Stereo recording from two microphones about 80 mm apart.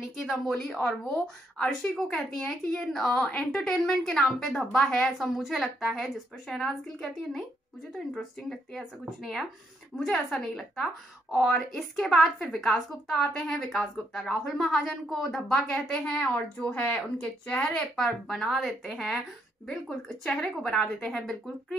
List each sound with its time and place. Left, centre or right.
0.7 s speech: centre
1.2 s a woman's voice: centre
17.9 s a woman's voice: centre